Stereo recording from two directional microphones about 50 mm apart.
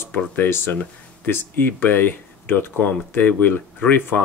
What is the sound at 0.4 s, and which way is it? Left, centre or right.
Speech, left.